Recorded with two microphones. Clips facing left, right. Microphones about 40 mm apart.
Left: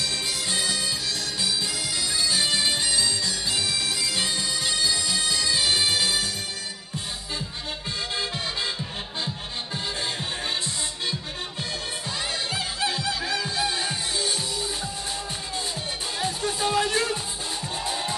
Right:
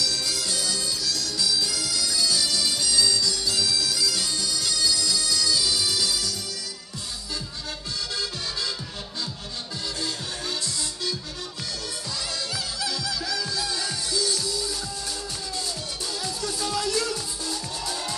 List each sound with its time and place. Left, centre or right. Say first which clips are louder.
0.0 s bagpipes: even; left
12.5 s music: left 3 dB; left
16.2 s music: left 5 dB; left